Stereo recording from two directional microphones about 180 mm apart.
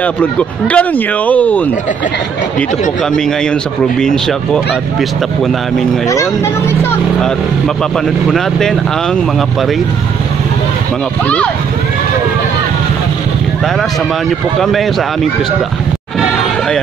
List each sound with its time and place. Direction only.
0.0 s speech: 5° left (ahead or behind)
4.0 s speech: centre (ahead or behind)
7.2 s speech: 5° left (ahead or behind)
11.2 s speech: 5° left (ahead or behind)
14.6 s speech: centre (ahead or behind)